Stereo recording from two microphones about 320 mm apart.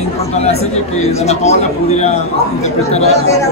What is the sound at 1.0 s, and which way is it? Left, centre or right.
Speech, centre.